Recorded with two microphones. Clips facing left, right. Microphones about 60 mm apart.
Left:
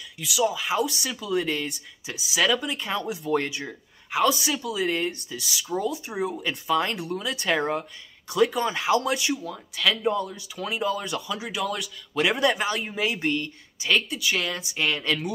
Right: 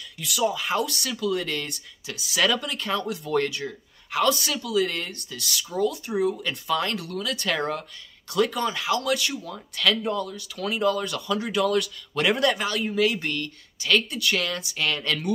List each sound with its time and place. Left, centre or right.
0.2 s speech: centre
0.8 s speech: centre
6.7 s speech: left
9.3 s speech: centre
10.1 s speech: left
15.0 s speech: centre